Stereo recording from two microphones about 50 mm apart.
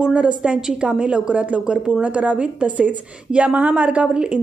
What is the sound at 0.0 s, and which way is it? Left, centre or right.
A woman's voice, centre.